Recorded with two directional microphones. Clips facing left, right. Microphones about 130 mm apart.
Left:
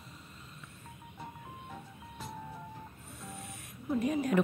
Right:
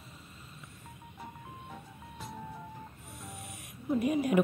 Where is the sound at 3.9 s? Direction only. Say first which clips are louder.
Right 2 dB; 10° right (ahead or behind).